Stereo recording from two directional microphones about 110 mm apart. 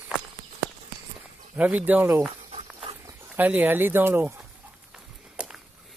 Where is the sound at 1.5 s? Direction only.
15° right (ahead or behind).